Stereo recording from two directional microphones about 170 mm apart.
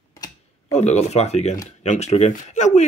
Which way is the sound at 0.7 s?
40° left (ahead or behind).